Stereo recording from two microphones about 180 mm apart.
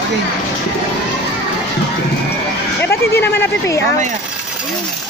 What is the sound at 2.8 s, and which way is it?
Speech, 10° left (ahead or behind).